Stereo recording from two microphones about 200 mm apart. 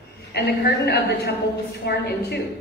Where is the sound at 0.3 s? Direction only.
50° left (ahead or behind).